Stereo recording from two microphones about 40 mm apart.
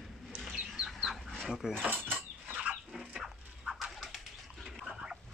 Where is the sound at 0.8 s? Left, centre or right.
Centre.